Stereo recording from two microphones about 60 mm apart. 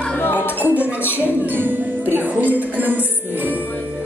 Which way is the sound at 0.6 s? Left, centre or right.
Right.